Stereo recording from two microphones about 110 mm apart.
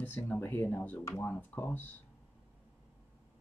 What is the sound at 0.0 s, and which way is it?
Speech, 15° left (ahead or behind).